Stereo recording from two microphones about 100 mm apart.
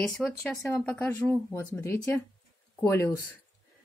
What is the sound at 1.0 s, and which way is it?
Speech, 20° left (ahead or behind).